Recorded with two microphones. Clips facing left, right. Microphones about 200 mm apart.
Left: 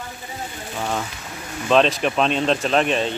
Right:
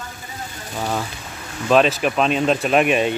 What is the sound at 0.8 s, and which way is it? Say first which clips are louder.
Speech: right 2 dB; 5° right (ahead or behind).